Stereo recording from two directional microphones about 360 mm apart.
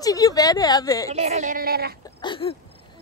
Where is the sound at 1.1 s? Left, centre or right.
Centre.